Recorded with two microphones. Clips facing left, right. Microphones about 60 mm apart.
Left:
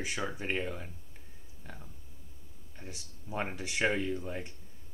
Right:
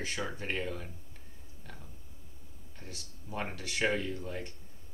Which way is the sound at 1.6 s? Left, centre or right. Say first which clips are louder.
Left 2 dB; centre.